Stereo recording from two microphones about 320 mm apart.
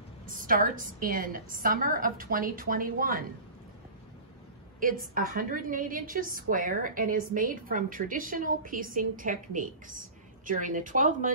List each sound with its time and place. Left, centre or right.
0.4 s a woman's voice: right
4.7 s a woman's voice: right